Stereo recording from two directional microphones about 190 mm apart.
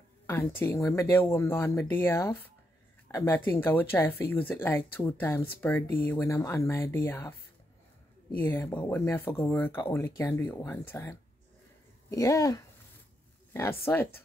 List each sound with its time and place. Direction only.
0.3 s speech: 10° left (ahead or behind)